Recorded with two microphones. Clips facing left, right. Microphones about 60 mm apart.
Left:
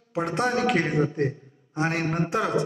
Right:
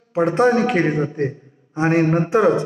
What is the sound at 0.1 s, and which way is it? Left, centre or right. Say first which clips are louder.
A man's voice: right 9 dB; right.